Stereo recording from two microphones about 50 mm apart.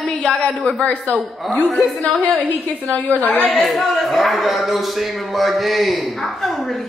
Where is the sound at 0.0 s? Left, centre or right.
Centre.